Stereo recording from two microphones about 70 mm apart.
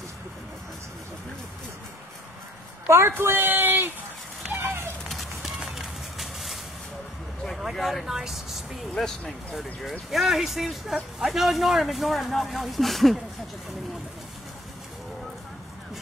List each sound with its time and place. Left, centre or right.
2.9 s speech: right
4.5 s a sound: right
5.1 s run: centre
7.4 s speech: centre